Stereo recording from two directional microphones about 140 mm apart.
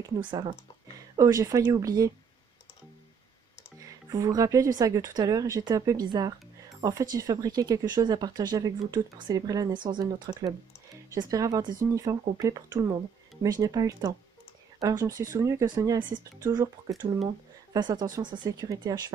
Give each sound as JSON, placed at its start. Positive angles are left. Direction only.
{"t": 0.3, "sound": "speech", "side_deg": -35}
{"t": 4.1, "sound": "speech", "side_deg": -25}